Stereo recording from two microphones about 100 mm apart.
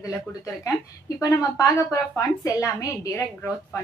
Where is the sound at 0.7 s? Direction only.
35° left (ahead or behind).